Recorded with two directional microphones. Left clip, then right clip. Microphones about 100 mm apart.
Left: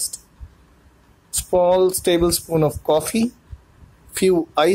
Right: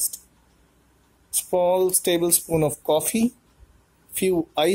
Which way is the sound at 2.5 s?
30° right (ahead or behind).